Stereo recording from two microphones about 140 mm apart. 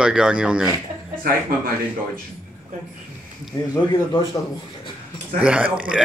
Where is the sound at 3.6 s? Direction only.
25° left (ahead or behind).